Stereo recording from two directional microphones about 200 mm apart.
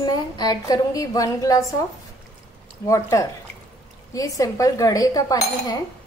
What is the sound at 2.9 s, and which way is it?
Speech, 15° left (ahead or behind).